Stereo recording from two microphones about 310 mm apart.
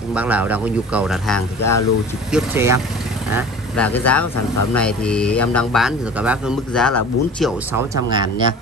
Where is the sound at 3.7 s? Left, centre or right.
Centre.